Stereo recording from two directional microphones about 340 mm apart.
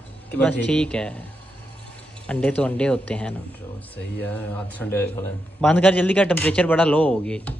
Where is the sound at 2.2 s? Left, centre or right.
Centre.